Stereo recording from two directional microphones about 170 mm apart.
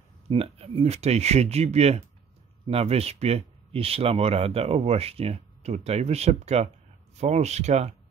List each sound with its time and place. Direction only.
0.3 s speech: 35° right (ahead or behind)